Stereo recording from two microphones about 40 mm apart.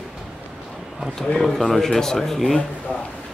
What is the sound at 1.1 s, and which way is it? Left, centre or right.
Speech, centre.